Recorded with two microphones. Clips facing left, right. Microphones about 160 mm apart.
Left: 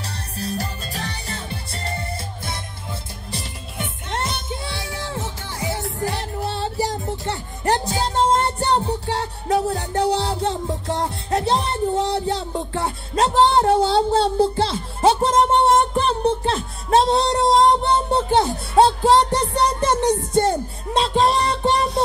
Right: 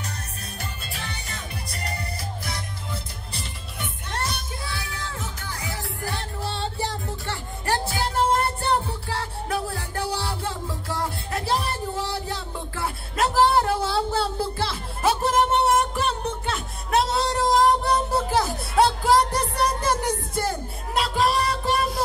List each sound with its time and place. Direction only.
0.0 s music: 35° left (ahead or behind)
4.1 s music: 25° left (ahead or behind)